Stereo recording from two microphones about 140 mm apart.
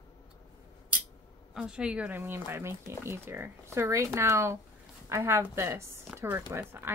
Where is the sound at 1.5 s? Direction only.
5° right (ahead or behind).